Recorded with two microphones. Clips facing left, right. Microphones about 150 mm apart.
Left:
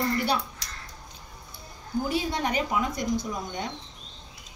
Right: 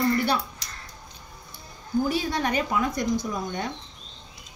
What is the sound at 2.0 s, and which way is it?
Speech, 20° left (ahead or behind).